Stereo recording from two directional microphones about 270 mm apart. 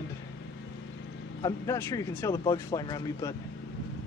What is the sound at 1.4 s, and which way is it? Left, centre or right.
Speech, centre.